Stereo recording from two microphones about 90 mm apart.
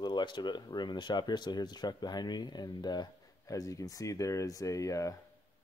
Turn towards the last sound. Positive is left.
turn(degrees=35)  # may be behind; listen again after turning